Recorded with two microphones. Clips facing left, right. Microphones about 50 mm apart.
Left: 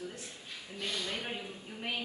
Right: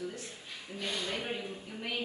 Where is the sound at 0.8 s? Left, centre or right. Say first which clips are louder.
Right 1 dB; centre.